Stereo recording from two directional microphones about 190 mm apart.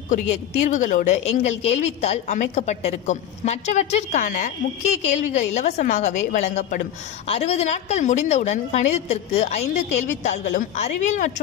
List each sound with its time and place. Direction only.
0.6 s a woman's voice: 40° left (ahead or behind)